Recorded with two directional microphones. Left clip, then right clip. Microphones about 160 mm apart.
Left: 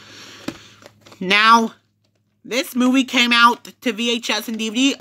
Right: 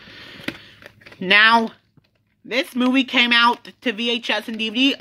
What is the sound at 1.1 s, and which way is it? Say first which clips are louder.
Speech: left 1 dB; 25° left (ahead or behind).